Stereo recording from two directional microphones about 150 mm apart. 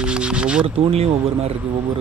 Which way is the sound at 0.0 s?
5° right (ahead or behind).